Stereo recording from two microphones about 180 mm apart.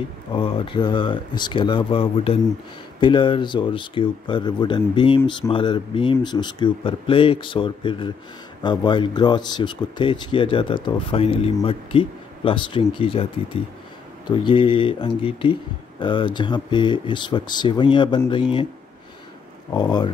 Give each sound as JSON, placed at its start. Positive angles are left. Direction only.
{"t": 0.3, "sound": "speech", "side_deg": 30}
{"t": 19.7, "sound": "speech", "side_deg": 25}